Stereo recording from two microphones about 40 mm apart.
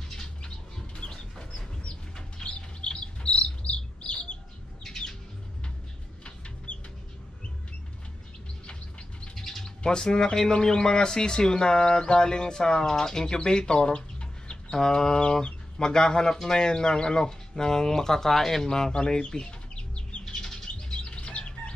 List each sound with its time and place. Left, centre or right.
0.7 s bird: centre
4.0 s chicken: left
4.8 s squawk: centre
6.7 s chicken: left
9.3 s bird: centre
9.8 s speech: centre
19.2 s chicken: left
20.3 s bird flight: centre